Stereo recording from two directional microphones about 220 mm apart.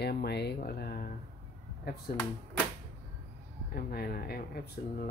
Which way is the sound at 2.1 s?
40° left (ahead or behind).